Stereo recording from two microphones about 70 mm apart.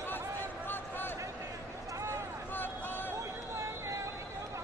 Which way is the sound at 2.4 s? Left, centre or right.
Left.